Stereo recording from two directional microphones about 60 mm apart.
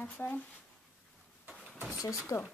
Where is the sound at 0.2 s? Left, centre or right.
Left.